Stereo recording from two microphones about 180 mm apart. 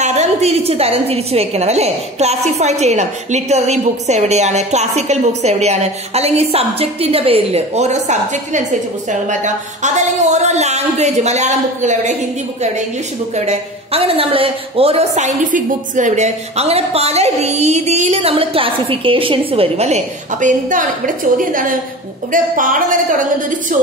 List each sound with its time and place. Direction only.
0.0 s a woman's voice: 40° right (ahead or behind)
13.5 s a woman's voice: 35° right (ahead or behind); by 23.2 s 50° right (ahead or behind)